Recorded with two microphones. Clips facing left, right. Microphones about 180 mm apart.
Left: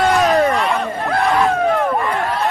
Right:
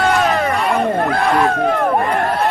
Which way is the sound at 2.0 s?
50° right (ahead or behind).